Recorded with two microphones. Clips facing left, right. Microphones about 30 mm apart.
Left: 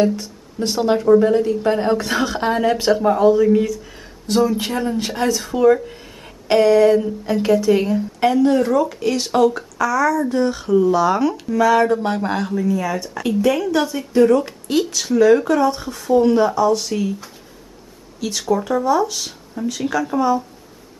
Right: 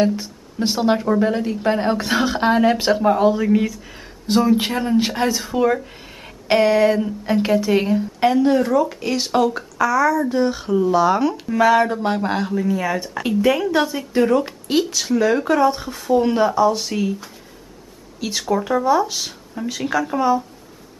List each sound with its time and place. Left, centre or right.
0.0 s speech: centre
11.4 s speech: right
11.7 s speech: centre
12.6 s speech: centre
18.5 s speech: centre